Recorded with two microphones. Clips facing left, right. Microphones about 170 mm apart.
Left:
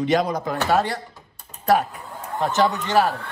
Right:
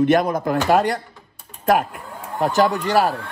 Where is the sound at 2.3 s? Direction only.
40° right (ahead or behind).